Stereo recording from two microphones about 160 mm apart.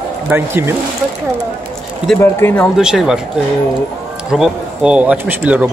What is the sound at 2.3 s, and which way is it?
Speech, 15° left (ahead or behind).